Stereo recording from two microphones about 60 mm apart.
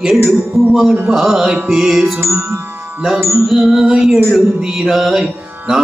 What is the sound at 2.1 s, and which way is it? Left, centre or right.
Music, right.